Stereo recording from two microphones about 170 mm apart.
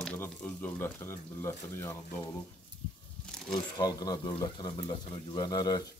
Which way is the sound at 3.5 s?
25° left (ahead or behind).